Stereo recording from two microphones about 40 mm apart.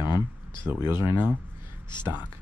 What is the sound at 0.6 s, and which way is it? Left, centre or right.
Speech, right.